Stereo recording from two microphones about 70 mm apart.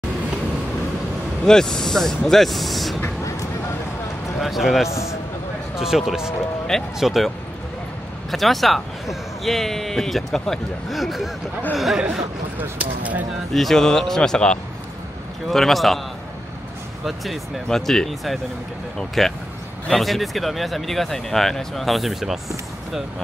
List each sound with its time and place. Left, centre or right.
1.4 s speech: centre
4.4 s speech: centre
4.8 s a man's voice: left
5.8 s speech: centre
12.7 s speech: right
13.5 s speech: centre
17.0 s speech: centre